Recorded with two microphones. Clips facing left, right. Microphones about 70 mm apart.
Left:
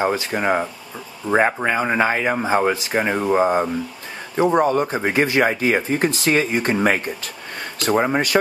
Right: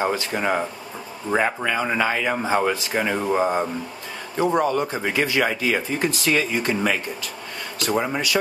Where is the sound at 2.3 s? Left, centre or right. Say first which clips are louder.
Left 3 dB; centre.